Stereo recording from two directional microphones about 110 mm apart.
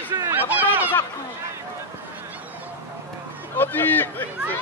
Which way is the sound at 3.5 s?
20° left (ahead or behind).